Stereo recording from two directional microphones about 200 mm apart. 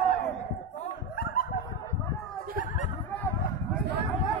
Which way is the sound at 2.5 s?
40° left (ahead or behind).